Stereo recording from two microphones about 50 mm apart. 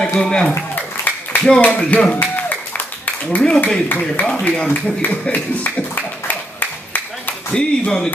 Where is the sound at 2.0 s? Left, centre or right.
Left.